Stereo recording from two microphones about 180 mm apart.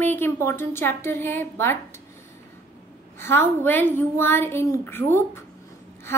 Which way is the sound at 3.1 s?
15° left (ahead or behind).